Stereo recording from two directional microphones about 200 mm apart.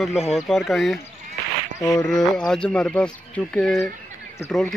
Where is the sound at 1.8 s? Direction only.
15° left (ahead or behind).